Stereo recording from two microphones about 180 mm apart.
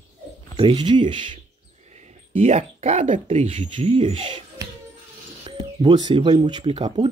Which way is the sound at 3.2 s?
35° right (ahead or behind).